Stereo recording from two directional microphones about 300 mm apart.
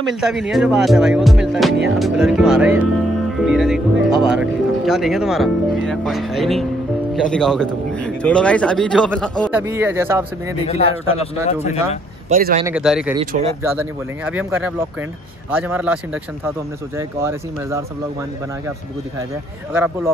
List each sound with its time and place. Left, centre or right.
0.1 s speech: centre
10.6 s speech: left
12.4 s speech: right
12.6 s speech: centre
19.7 s speech: centre